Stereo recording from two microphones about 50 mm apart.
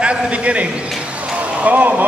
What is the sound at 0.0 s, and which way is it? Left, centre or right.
A man's voice, right.